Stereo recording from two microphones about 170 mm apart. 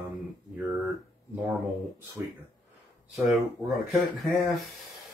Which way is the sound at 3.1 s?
Centre (ahead or behind).